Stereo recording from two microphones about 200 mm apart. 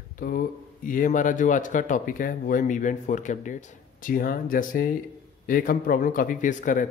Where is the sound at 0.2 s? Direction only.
45° left (ahead or behind).